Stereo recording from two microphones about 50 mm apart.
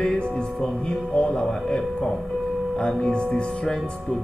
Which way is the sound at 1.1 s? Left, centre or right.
Centre.